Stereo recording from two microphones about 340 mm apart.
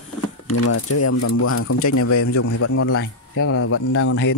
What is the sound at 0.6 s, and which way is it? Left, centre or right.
Speech, left.